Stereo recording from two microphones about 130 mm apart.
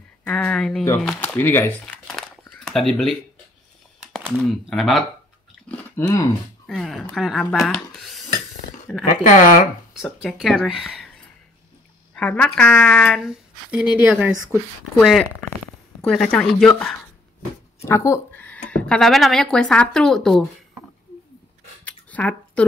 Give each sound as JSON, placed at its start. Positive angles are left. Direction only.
{"t": 0.2, "sound": "speech", "side_deg": 10}
{"t": 2.1, "sound": "a sound", "side_deg": 5}
{"t": 4.1, "sound": "speech", "side_deg": 5}
{"t": 5.7, "sound": "chewing", "side_deg": 10}
{"t": 6.7, "sound": "speech", "side_deg": 0}
{"t": 9.2, "sound": "speech", "side_deg": 85}
{"t": 10.1, "sound": "speech", "side_deg": 0}
{"t": 12.2, "sound": "speech", "side_deg": 10}
{"t": 13.2, "sound": "speech", "side_deg": -5}
{"t": 14.3, "sound": "speech", "side_deg": 15}
{"t": 16.1, "sound": "speech", "side_deg": 5}
{"t": 17.8, "sound": "speech", "side_deg": 20}
{"t": 21.8, "sound": "a sound", "side_deg": 10}